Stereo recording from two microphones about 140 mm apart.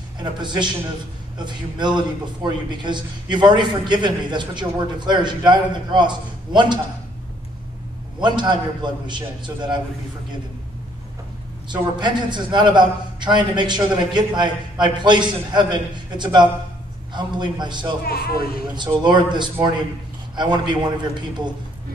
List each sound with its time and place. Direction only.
0.2 s a man's voice: 30° right (ahead or behind)
8.2 s a man's voice: 35° right (ahead or behind)
11.7 s a man's voice: 30° right (ahead or behind)
18.0 s a man's voice: 90° left
18.8 s a man's voice: 35° right (ahead or behind)